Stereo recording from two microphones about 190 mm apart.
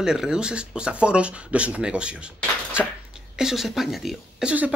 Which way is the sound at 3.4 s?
Centre (ahead or behind).